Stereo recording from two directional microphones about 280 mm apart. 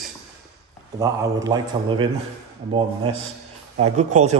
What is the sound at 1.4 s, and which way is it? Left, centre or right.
Speech, centre.